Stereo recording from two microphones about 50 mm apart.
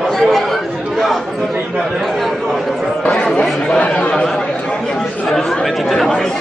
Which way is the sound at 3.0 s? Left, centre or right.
Centre.